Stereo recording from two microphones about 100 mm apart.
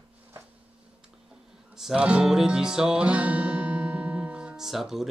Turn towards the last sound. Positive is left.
turn(degrees=-5)  # may be behind; listen again after turning